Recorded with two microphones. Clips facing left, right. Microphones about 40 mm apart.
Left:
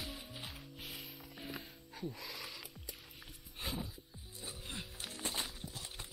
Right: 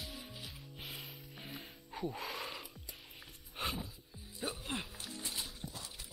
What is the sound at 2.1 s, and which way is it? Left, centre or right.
Speech, right.